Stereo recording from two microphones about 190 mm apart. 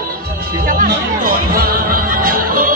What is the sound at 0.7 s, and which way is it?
Music, 50° right (ahead or behind).